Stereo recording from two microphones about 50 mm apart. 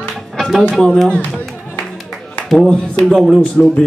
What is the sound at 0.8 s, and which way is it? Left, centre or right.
Speech, centre.